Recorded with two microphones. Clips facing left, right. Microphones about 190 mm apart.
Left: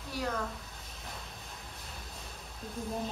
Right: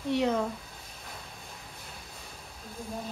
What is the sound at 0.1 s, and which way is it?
Speech, 20° right (ahead or behind).